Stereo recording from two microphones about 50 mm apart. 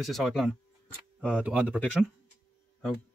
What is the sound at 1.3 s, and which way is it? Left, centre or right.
Speech, right.